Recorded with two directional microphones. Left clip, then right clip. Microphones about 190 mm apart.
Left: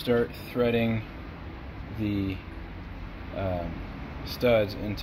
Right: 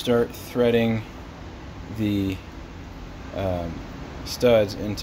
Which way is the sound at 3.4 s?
15° right (ahead or behind).